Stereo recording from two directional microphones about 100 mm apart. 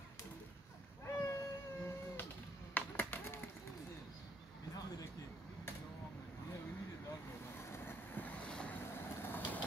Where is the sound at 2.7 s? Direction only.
20° left (ahead or behind).